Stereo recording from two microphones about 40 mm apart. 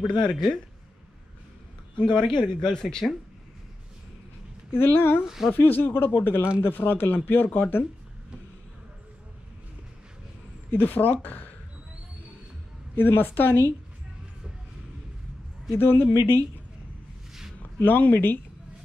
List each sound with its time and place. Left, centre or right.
0.0 s speech: left
2.0 s speech: left
4.7 s a woman's voice: left
10.7 s speech: left
12.9 s a woman's voice: left
15.7 s speech: left
17.3 s a sound: centre
17.7 s speech: left